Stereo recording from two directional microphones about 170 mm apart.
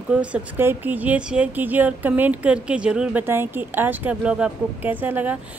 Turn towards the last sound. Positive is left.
turn(degrees=-10)  # may be behind; listen again after turning